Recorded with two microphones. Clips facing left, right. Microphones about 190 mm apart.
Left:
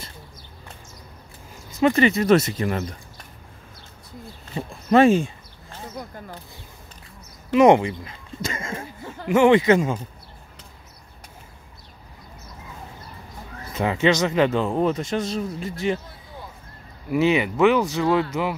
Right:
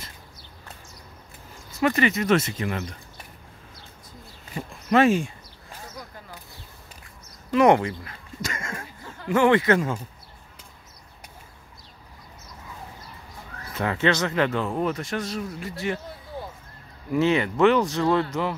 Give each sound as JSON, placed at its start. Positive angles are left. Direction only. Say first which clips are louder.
{"t": 1.8, "sound": "speech", "louder": "left 4 dB", "side_deg": 25}
{"t": 4.6, "sound": "speech", "louder": "left 4 dB", "side_deg": 30}
{"t": 7.5, "sound": "speech", "louder": "left 3 dB", "side_deg": 20}
{"t": 13.7, "sound": "speech", "louder": "left 3 dB", "side_deg": 15}
{"t": 17.1, "sound": "speech", "louder": "left 2 dB", "side_deg": 10}